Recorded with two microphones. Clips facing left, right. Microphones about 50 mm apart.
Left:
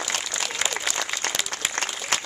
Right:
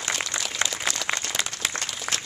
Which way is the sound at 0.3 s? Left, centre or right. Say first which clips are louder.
Left 1 dB; right.